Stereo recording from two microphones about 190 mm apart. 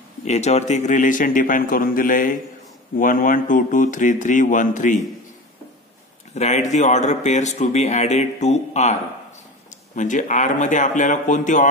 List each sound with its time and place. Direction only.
0.2 s a man's voice: 35° left (ahead or behind)
6.3 s speech: 35° left (ahead or behind)
9.9 s speech: 40° left (ahead or behind)